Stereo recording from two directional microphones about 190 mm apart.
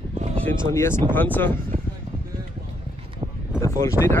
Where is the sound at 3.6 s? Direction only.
15° left (ahead or behind).